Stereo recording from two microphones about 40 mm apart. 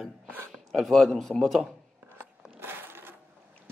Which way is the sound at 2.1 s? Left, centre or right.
Right.